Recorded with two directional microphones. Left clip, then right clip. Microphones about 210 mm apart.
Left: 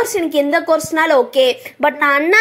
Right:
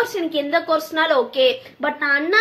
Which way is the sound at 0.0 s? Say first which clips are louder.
Left 6 dB; 35° left (ahead or behind).